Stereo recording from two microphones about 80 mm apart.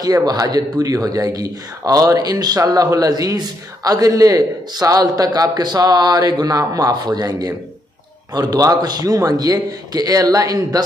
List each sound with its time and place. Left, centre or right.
0.0 s a man's voice: right